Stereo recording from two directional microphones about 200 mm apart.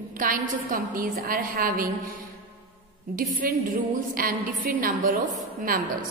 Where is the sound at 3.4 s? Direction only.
45° right (ahead or behind).